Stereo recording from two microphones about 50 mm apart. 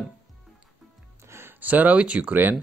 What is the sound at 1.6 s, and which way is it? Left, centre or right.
Speech, right.